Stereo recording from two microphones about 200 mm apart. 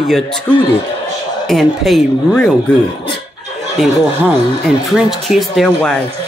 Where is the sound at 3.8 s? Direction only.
Centre (ahead or behind).